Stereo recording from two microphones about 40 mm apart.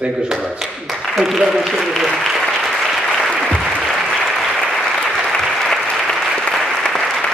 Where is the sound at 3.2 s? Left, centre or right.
Centre.